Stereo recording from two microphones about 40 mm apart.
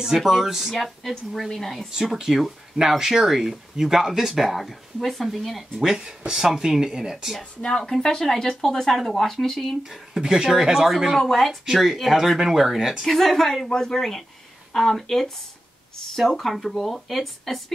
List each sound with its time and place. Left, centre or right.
0.0 s speech: centre
1.5 s speech: centre
2.1 s speech: centre
5.9 s speech: right
6.3 s speech: centre
7.6 s speech: centre
10.1 s speech: centre
11.1 s speech: centre
13.0 s speech: centre
13.7 s speech: centre
13.9 s speech: centre